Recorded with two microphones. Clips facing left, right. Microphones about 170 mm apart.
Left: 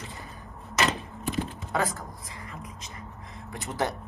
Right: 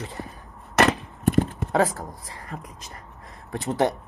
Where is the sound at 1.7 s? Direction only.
30° right (ahead or behind).